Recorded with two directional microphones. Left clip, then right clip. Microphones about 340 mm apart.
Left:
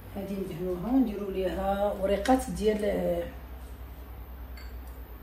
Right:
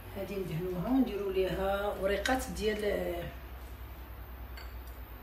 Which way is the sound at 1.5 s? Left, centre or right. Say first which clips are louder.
Left 4 dB; centre.